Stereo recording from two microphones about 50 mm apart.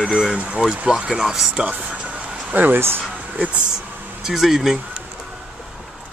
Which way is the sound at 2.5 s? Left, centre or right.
Right.